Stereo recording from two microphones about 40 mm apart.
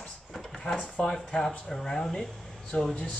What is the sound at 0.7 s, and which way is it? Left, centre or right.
Speech, left.